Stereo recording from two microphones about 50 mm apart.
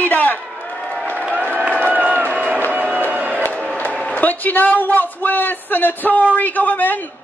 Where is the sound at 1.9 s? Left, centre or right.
Right.